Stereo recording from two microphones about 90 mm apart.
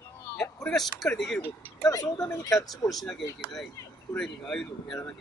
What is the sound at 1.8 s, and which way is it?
Speech, 40° left (ahead or behind).